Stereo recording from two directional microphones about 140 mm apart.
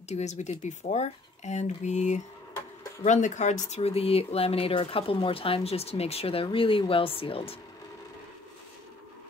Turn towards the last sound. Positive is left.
turn(degrees=40)  # may be behind; listen again after turning